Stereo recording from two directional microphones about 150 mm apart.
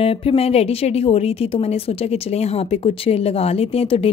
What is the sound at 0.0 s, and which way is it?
A woman's voice, 40° left (ahead or behind).